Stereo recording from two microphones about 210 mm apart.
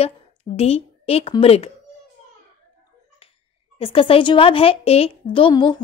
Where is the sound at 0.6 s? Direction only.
30° left (ahead or behind).